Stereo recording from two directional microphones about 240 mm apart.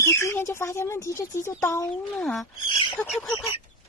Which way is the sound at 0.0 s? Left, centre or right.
Centre.